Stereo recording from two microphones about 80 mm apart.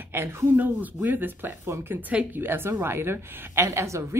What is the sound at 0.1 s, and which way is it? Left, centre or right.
Speech, right.